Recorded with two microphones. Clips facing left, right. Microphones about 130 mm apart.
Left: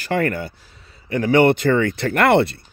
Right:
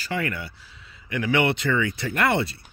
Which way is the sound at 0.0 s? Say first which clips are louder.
Left 8 dB; 50° left (ahead or behind).